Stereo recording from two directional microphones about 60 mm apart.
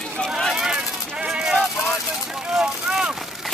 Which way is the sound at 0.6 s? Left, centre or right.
Centre.